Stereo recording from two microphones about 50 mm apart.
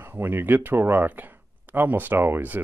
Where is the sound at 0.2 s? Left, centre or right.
Right.